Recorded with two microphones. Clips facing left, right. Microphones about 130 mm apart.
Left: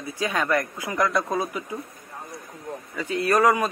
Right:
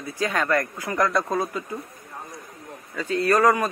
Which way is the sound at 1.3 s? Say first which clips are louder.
Right 1 dB; 15° left (ahead or behind).